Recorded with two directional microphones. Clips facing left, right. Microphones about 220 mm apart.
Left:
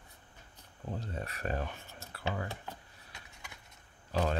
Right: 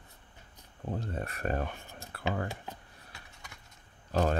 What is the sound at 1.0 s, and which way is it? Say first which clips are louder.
Speech: right 2 dB; 50° right (ahead or behind).